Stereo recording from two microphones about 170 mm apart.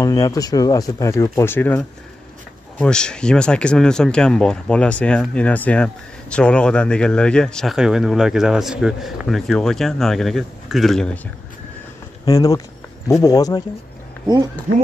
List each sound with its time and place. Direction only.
0.0 s speech: 20° left (ahead or behind); by 11.1 s centre (ahead or behind)
12.3 s speech: 20° left (ahead or behind)